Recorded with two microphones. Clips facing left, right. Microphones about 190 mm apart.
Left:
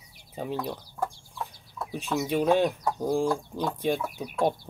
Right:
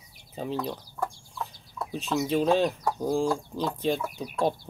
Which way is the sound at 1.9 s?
10° left (ahead or behind).